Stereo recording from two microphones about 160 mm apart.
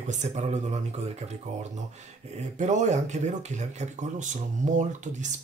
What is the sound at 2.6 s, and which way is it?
Speech, 50° right (ahead or behind).